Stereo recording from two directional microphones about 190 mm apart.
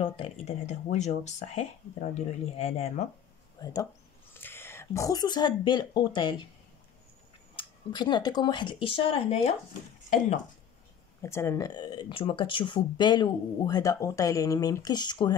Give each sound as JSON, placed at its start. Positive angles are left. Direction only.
{"t": 0.0, "sound": "speech", "side_deg": 30}
{"t": 3.6, "sound": "speech", "side_deg": 20}
{"t": 7.5, "sound": "speech", "side_deg": 25}
{"t": 11.2, "sound": "speech", "side_deg": 15}